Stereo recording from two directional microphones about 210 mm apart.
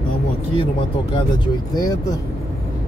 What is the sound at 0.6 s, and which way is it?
Speech, 25° left (ahead or behind).